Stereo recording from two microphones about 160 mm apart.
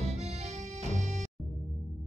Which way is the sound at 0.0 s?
40° right (ahead or behind).